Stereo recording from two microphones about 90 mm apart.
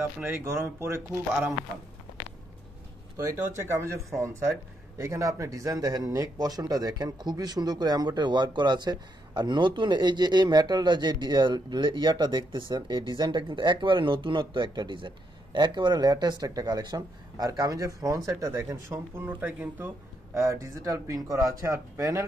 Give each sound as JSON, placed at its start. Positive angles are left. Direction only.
{"t": 0.0, "sound": "speech", "side_deg": -25}
{"t": 3.2, "sound": "speech", "side_deg": -30}
{"t": 20.3, "sound": "speech", "side_deg": -35}